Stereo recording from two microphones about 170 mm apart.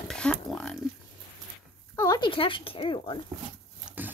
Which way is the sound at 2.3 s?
30° left (ahead or behind).